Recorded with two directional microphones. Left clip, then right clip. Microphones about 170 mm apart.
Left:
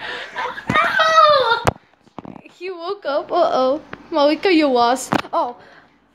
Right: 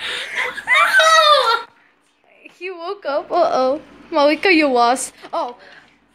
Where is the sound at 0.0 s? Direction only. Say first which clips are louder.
Right 3 dB; 35° left (ahead or behind).